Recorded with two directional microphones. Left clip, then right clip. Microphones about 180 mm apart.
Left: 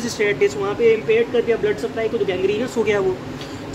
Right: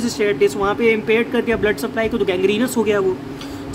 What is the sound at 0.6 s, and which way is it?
Speech, 30° right (ahead or behind).